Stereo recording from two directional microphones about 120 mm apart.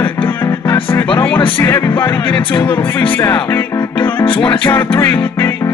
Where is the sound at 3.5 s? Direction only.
20° left (ahead or behind).